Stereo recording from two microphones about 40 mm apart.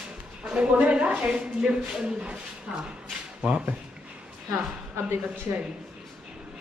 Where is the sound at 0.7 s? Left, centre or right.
Right.